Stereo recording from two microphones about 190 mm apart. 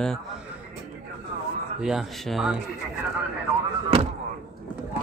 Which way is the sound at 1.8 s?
Centre (ahead or behind).